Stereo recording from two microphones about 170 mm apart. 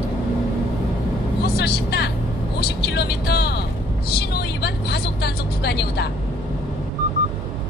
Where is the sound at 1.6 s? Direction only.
75° left (ahead or behind).